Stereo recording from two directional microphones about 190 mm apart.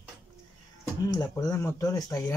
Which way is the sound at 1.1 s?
20° left (ahead or behind).